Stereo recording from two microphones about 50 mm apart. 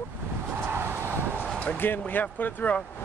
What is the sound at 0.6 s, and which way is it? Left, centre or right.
Vehicle, right.